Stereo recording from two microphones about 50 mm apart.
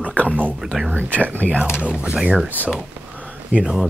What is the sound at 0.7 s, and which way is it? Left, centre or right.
Speech, centre.